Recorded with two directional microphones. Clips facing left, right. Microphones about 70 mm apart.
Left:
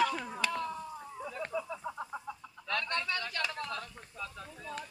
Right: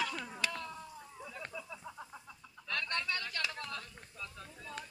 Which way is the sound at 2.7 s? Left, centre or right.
Left.